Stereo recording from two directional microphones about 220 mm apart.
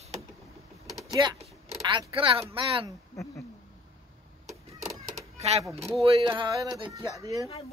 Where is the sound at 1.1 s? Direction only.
20° right (ahead or behind).